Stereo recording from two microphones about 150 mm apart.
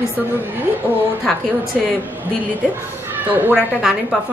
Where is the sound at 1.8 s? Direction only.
Centre (ahead or behind).